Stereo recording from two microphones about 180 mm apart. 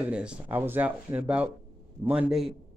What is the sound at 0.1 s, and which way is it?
Speech, 5° right (ahead or behind).